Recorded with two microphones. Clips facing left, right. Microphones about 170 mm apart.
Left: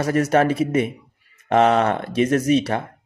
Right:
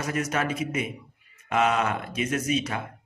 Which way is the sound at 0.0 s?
35° left (ahead or behind).